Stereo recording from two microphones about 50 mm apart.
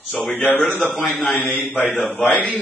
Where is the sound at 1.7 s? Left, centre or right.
Left.